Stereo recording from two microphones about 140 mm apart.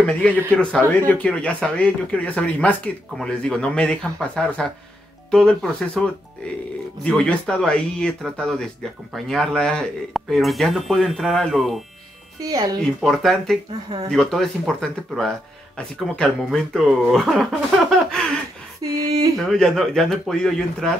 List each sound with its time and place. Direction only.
0.6 s speech: 10° left (ahead or behind)
12.4 s speech: 25° right (ahead or behind)
13.0 s speech: centre (ahead or behind)
18.8 s speech: 30° right (ahead or behind)
19.3 s speech: centre (ahead or behind)